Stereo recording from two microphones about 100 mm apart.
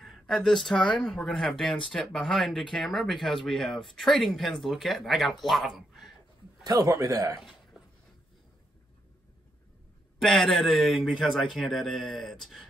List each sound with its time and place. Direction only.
0.0 s speech: centre (ahead or behind)
6.6 s a man's voice: 35° right (ahead or behind)
7.8 s a sound: 5° right (ahead or behind)
10.1 s speech: 5° left (ahead or behind)